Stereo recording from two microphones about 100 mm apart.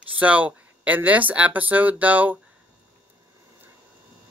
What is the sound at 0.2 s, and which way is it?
Speech, 15° right (ahead or behind).